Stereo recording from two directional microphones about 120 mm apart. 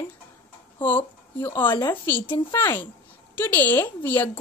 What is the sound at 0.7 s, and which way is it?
Speech, 15° left (ahead or behind).